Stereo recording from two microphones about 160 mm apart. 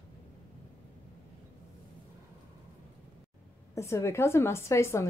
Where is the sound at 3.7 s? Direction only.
15° left (ahead or behind).